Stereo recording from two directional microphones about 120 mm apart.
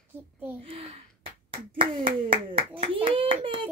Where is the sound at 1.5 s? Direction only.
50° right (ahead or behind).